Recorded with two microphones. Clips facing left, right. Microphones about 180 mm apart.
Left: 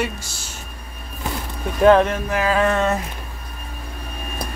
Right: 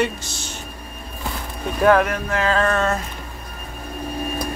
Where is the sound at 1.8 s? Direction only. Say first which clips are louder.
Left 3 dB; 20° left (ahead or behind).